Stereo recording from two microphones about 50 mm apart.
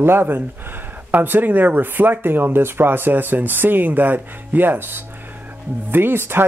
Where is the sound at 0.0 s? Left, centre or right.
Right.